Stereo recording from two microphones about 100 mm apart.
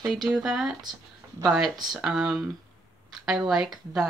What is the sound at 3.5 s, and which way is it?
Speech, 5° right (ahead or behind).